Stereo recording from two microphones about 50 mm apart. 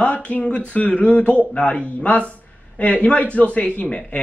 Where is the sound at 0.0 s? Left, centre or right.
Left.